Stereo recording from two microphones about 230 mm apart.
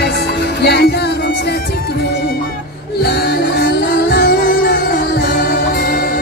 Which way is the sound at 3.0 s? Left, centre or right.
Left.